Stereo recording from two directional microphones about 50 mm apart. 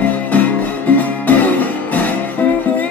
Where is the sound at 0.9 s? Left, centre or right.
Left.